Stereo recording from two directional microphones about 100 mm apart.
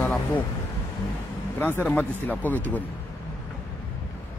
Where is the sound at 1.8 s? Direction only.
15° left (ahead or behind).